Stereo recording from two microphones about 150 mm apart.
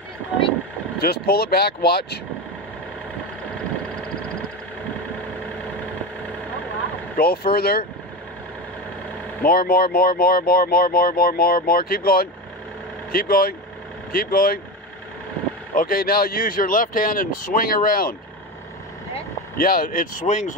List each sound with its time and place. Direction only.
0.9 s speech: 90° left
7.2 s speech: 90° left
9.4 s speech: 85° left
15.7 s speech: 70° left (ahead or behind)
19.5 s speech: 75° left (ahead or behind); by 20.5 s 55° left (ahead or behind)